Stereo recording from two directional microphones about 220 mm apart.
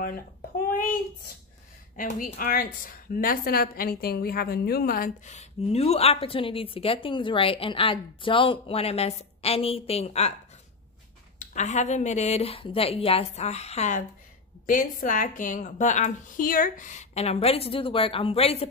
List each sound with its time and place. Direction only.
2.0 s a woman's voice: 35° left (ahead or behind)
11.3 s a woman's voice: 30° left (ahead or behind)